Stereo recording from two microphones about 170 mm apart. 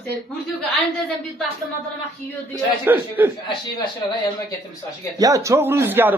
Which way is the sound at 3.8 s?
25° left (ahead or behind).